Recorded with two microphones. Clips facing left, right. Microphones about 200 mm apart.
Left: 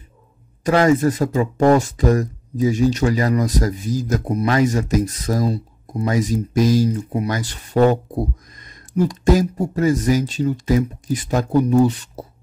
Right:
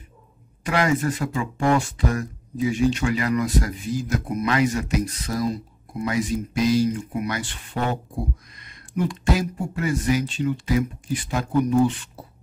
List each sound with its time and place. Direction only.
0.7 s speech: 40° left (ahead or behind)